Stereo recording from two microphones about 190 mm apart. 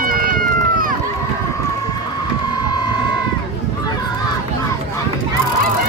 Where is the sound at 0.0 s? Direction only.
45° right (ahead or behind).